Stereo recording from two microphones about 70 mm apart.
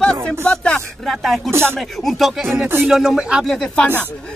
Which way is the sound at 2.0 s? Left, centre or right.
Centre.